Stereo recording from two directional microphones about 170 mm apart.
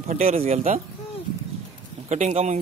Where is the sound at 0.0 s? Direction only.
40° right (ahead or behind).